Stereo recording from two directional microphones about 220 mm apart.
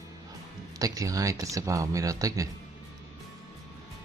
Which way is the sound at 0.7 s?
15° right (ahead or behind).